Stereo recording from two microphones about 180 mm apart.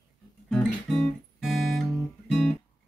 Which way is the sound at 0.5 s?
Centre (ahead or behind).